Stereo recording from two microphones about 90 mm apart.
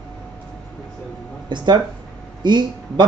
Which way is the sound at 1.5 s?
60° right (ahead or behind).